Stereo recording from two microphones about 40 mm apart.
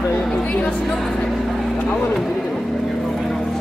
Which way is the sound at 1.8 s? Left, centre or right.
Left.